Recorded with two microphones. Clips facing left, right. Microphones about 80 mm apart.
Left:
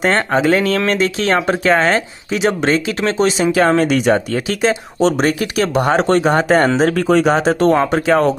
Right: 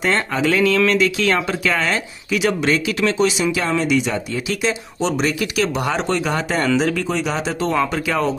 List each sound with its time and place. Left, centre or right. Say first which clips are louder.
0.0 s speech: left 5 dB; left
3.6 s speech: left 7 dB; left
6.9 s speech: left 8 dB; left